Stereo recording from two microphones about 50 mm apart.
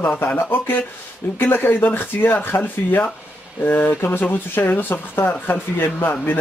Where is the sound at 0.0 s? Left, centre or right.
Left.